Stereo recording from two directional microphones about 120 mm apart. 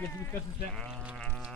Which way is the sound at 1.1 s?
5° left (ahead or behind).